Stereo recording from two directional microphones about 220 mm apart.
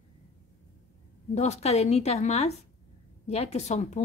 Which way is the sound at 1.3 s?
30° left (ahead or behind).